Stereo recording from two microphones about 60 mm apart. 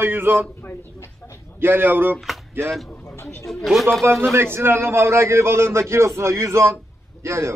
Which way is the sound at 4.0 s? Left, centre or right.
Right.